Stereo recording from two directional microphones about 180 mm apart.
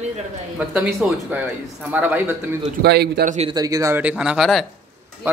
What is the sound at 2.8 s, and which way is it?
Speech, 65° right (ahead or behind).